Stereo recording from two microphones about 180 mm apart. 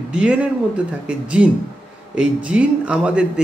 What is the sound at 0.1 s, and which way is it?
Speech, 5° right (ahead or behind).